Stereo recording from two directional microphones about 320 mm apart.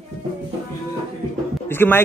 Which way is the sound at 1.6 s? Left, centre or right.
Centre.